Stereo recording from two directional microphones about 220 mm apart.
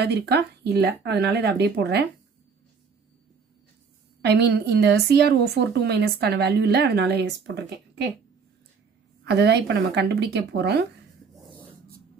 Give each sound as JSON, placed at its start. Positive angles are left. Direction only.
{"t": 0.0, "sound": "a woman's voice", "side_deg": -50}
{"t": 4.2, "sound": "a woman's voice", "side_deg": -50}
{"t": 9.2, "sound": "a woman's voice", "side_deg": -50}